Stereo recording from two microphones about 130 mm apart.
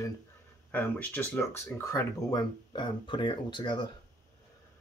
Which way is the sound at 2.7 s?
35° left (ahead or behind).